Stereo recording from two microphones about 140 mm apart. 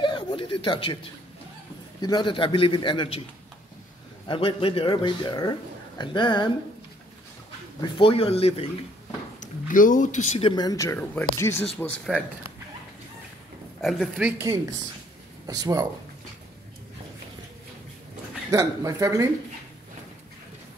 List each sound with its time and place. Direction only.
0.0 s a sound: 35° left (ahead or behind)
2.0 s speech: 30° left (ahead or behind)
4.3 s speech: 40° left (ahead or behind)
7.8 s speech: 40° left (ahead or behind)
9.4 s speech: 70° left (ahead or behind)
10.4 s speech: 30° left (ahead or behind)
11.8 s speech: 5° left (ahead or behind)
13.7 s speech: centre (ahead or behind)
14.4 s speech: 25° right (ahead or behind)
18.5 s speech: 25° right (ahead or behind)